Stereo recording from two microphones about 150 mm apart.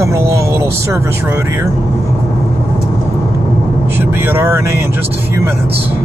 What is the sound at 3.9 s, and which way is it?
Speech, 15° right (ahead or behind).